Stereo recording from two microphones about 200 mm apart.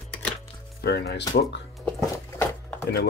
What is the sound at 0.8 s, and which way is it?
Speech, 55° left (ahead or behind).